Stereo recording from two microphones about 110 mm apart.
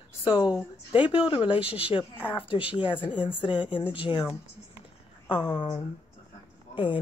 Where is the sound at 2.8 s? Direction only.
50° left (ahead or behind).